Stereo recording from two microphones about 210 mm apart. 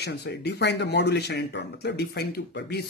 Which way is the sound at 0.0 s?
50° left (ahead or behind).